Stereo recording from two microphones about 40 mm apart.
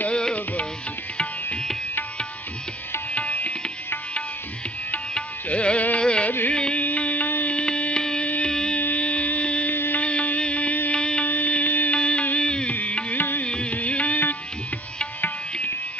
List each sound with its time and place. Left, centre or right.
0.1 s music: left
3.1 s tabla: left
5.5 s music: left
6.8 s music: left
7.4 s music: left
8.9 s music: left
9.7 s music: left
9.9 s music: left
11.2 s music: left
11.9 s music: left
12.8 s music: left